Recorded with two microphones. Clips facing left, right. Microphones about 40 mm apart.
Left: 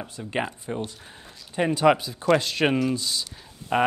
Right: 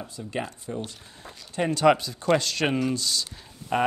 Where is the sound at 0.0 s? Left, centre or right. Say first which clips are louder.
Left 3 dB; left.